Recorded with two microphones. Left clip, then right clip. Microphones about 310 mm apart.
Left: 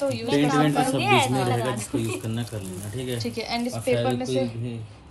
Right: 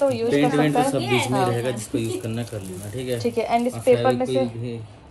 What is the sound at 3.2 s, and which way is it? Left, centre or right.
Speech, right.